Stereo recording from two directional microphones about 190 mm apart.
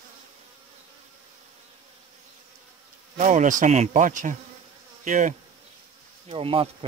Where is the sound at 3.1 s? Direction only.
40° right (ahead or behind).